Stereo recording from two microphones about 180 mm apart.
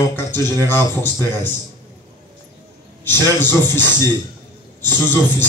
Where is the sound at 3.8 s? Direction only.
20° right (ahead or behind).